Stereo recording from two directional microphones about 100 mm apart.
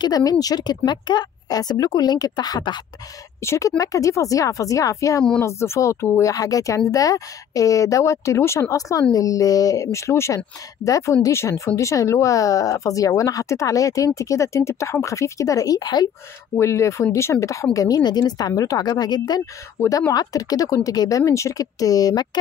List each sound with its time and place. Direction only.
0.0 s speech: 40° left (ahead or behind)
3.3 s speech: 30° left (ahead or behind)
6.3 s speech: 35° left (ahead or behind)
16.5 s speech: 30° left (ahead or behind); by 18.5 s 45° left (ahead or behind)
18.5 s speech: 35° left (ahead or behind)